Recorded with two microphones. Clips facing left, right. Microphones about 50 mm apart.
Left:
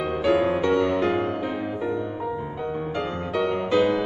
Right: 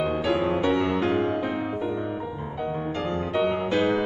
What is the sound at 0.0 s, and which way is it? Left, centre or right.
Music, centre.